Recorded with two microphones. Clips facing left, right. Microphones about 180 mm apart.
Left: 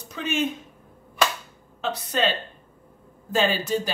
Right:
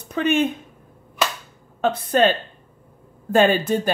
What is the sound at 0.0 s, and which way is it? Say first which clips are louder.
Speech: right 7 dB; 60° right (ahead or behind).